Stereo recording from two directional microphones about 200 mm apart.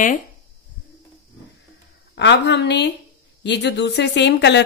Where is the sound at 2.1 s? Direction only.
60° left (ahead or behind).